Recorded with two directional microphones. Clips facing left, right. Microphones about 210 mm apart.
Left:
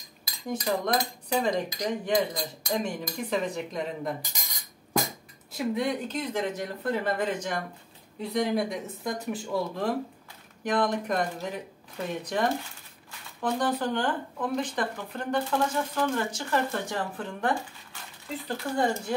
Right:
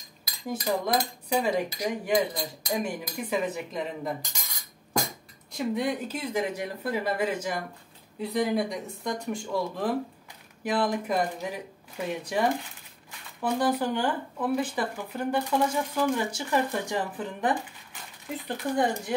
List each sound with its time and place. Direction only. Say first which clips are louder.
0.5 s cutlery: even; 5° right (ahead or behind)
5.5 s speech: even; centre (ahead or behind)
8.2 s cutlery: even; centre (ahead or behind)
10.6 s speech: even; 10° right (ahead or behind)